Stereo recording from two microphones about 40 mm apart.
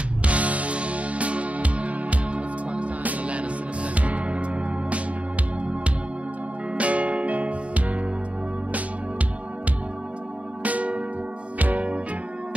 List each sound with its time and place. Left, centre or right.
0.2 s music: right
6.7 s music: right
10.6 s music: right